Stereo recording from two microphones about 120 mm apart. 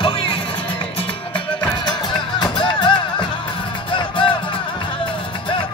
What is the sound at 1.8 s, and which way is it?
Music, 40° left (ahead or behind).